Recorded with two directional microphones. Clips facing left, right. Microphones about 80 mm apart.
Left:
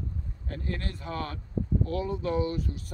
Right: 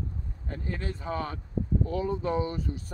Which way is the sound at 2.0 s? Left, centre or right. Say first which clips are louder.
Even; right.